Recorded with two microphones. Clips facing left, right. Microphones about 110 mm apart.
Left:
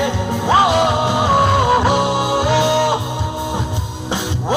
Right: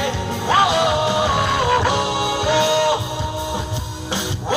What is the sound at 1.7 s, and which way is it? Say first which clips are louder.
Music: left 3 dB; 20° left (ahead or behind).